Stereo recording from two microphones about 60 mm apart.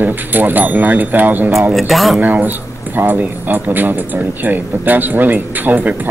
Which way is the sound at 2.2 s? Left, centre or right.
Right.